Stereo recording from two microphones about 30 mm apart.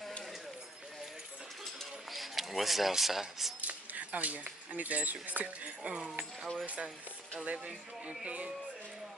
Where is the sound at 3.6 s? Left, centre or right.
Right.